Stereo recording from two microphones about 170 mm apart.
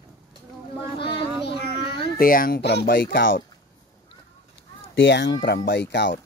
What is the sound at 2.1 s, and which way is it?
Speech, 55° left (ahead or behind).